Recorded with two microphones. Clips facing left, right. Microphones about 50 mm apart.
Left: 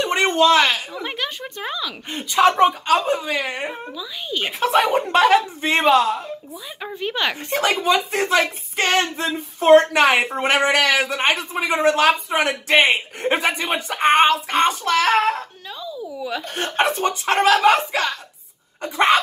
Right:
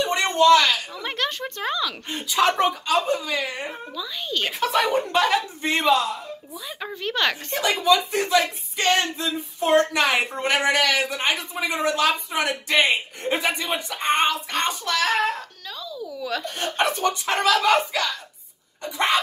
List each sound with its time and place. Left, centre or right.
0.0 s a sound: left
0.9 s speech: centre
2.8 s speech: left
3.9 s speech: centre
4.6 s speech: left
5.1 s a man's voice: left
7.0 s speech: centre
7.5 s a man's voice: left
15.8 s a sound: left
16.5 s speech: left
18.8 s a man's voice: left